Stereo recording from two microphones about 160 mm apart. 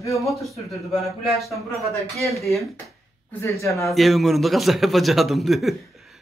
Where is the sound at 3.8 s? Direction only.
Centre (ahead or behind).